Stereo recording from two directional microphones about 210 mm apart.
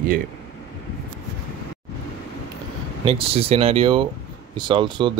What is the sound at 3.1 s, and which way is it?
Speech, 25° right (ahead or behind).